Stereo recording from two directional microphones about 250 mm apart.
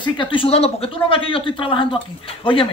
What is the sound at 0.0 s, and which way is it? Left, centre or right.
Speech, centre.